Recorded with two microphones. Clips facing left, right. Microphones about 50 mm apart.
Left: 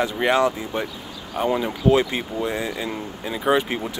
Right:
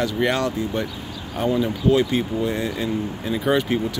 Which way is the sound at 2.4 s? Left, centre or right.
Centre.